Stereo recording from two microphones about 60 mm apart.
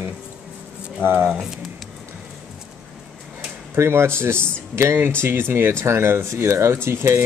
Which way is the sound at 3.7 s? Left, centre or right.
Right.